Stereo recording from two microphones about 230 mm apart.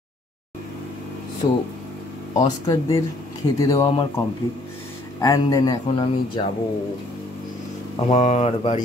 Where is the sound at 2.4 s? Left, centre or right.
Left.